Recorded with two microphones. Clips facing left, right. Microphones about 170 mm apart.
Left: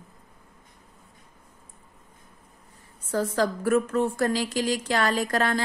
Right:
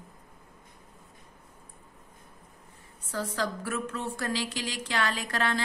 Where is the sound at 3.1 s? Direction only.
45° left (ahead or behind).